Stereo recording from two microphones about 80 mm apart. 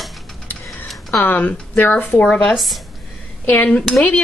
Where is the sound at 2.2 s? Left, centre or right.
Centre.